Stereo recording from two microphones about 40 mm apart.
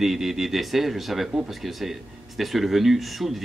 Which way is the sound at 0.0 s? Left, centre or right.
Centre.